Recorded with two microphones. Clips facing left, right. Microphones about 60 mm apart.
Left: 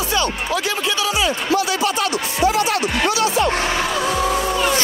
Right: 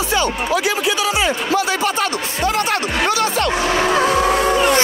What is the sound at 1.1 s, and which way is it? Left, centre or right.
Speech, right.